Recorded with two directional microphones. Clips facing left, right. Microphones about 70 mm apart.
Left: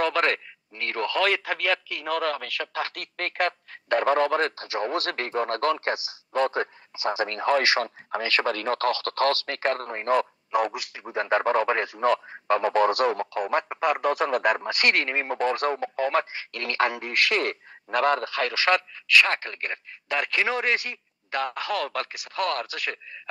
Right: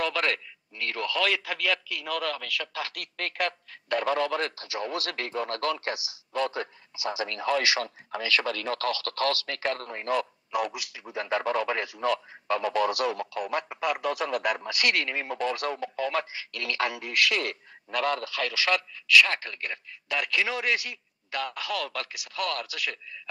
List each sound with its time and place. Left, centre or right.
0.0 s speech: left